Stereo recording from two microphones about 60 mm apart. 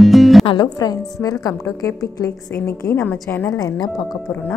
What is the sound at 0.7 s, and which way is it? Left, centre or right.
Speech, left.